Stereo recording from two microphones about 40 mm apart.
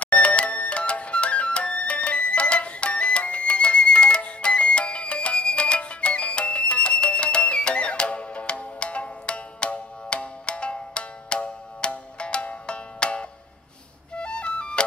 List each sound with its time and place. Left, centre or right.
0.0 s music: left